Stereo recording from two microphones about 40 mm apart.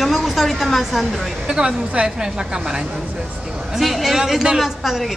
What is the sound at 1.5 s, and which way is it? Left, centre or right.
A woman's voice, centre.